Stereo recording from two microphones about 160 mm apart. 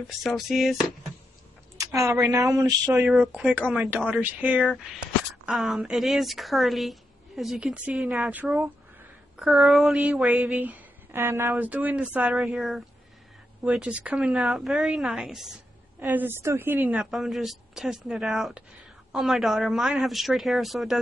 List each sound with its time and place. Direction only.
0.2 s speech: centre (ahead or behind)
1.8 s a woman's voice: 20° right (ahead or behind)
2.9 s speech: 10° right (ahead or behind)
16.0 s speech: 10° right (ahead or behind)
17.0 s speech: centre (ahead or behind)